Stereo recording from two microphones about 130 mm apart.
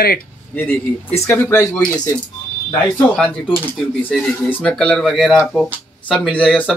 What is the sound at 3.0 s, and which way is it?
Speech, 15° left (ahead or behind).